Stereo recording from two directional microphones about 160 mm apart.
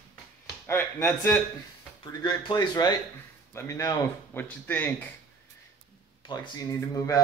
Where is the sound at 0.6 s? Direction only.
15° left (ahead or behind).